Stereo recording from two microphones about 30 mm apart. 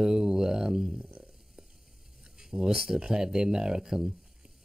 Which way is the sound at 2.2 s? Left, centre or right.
Right.